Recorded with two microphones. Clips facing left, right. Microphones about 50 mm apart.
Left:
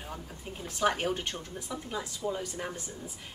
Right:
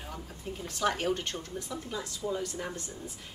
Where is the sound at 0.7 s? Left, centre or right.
Centre.